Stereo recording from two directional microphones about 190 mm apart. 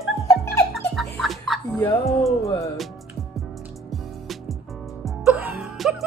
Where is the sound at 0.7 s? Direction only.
Centre (ahead or behind).